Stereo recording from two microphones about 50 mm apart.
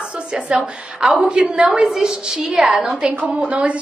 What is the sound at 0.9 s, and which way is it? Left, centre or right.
Speech, centre.